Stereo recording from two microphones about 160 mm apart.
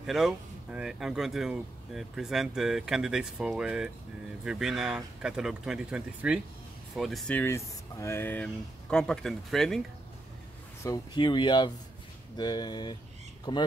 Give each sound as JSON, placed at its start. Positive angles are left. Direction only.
{"t": 0.0, "sound": "speech", "side_deg": 0}
{"t": 10.8, "sound": "speech", "side_deg": 25}